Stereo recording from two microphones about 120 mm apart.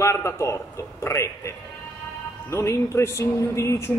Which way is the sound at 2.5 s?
25° left (ahead or behind).